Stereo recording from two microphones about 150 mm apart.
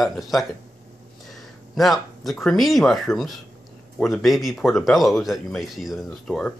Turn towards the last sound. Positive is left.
turn(degrees=0)  # may be behind; listen again after turning